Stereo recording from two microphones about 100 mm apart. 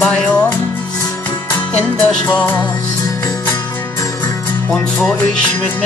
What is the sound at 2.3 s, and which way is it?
Music, 20° left (ahead or behind).